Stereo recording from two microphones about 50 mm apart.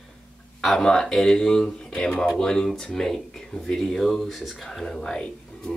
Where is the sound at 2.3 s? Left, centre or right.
Centre.